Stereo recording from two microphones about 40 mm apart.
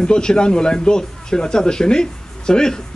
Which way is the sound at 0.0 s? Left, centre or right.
Centre.